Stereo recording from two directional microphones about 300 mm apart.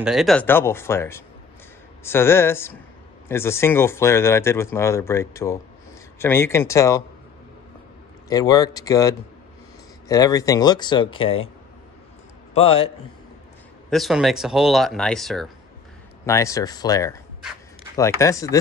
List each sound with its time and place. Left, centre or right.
0.0 s speech: centre
8.3 s speech: centre
12.5 s a man's voice: centre
13.8 s speech: centre